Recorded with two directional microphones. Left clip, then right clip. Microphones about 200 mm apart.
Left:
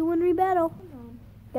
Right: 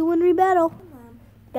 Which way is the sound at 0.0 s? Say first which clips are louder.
Right 5 dB; 25° right (ahead or behind).